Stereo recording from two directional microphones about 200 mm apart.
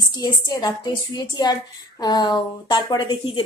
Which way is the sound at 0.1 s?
20° left (ahead or behind).